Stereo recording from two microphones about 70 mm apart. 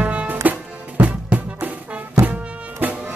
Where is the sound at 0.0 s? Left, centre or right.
Centre.